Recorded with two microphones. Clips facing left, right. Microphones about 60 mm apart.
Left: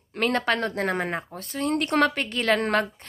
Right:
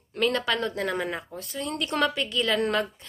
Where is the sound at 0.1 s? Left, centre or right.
Left.